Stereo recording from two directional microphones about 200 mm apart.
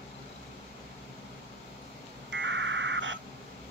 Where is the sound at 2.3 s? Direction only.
65° right (ahead or behind).